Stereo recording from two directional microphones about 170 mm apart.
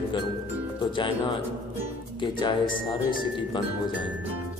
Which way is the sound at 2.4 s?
30° left (ahead or behind).